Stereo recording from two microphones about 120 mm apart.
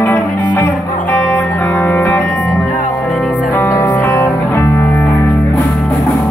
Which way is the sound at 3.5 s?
25° left (ahead or behind).